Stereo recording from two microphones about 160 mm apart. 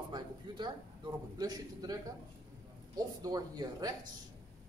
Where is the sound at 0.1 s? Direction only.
30° right (ahead or behind).